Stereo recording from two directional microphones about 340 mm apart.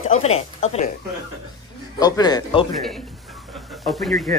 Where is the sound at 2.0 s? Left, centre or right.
Centre.